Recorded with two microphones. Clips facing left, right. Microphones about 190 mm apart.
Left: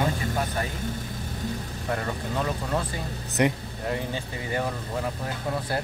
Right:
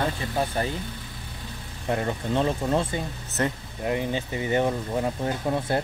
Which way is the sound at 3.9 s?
20° right (ahead or behind).